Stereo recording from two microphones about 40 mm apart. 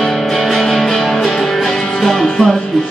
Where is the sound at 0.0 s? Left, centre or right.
Centre.